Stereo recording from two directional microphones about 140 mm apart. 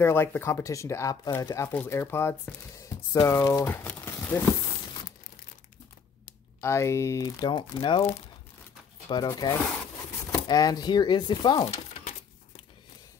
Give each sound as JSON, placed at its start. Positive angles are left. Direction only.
{"t": 0.0, "sound": "speech", "side_deg": 15}
{"t": 6.6, "sound": "speech", "side_deg": 20}
{"t": 9.1, "sound": "speech", "side_deg": 30}